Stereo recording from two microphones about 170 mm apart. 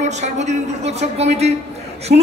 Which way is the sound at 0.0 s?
45° right (ahead or behind).